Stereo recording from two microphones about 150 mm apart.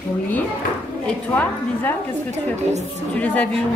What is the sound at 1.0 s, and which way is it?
Speech, 10° left (ahead or behind).